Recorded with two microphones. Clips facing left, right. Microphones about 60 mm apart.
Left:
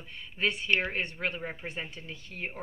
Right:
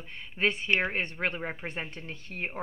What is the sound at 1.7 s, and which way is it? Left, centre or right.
Speech, right.